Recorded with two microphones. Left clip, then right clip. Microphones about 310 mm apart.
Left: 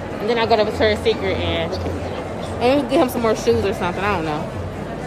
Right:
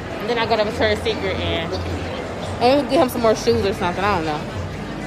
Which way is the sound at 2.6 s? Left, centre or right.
Centre.